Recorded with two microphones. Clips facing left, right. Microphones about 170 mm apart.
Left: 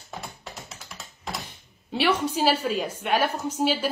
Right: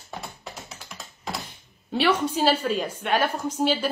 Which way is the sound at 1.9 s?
10° left (ahead or behind).